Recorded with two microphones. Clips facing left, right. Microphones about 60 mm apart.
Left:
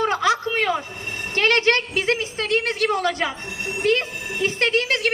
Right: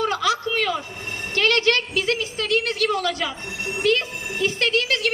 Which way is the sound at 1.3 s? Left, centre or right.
Left.